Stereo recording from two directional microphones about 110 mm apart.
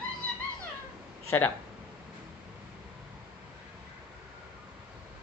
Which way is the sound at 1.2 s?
25° left (ahead or behind).